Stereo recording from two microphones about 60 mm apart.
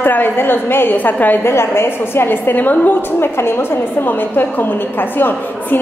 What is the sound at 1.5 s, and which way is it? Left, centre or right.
A woman's voice, left.